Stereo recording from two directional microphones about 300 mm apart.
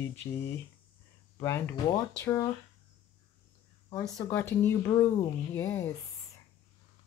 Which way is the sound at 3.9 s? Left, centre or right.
Centre.